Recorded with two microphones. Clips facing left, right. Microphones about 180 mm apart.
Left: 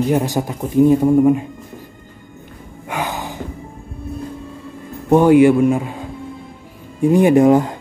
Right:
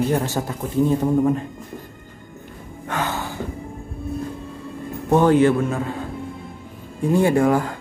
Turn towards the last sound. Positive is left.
turn(degrees=20)  # may be behind; listen again after turning